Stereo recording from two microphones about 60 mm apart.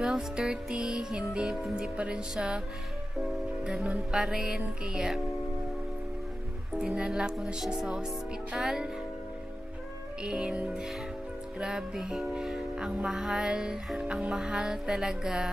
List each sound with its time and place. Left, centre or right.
0.0 s music: centre
6.7 s music: centre
10.2 s music: centre